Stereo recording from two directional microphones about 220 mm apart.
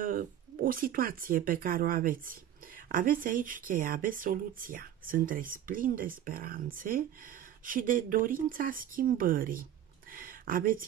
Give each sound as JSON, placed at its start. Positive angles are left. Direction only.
{"t": 0.0, "sound": "speech", "side_deg": -40}